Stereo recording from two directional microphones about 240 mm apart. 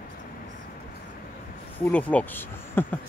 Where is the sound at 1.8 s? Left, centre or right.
Centre.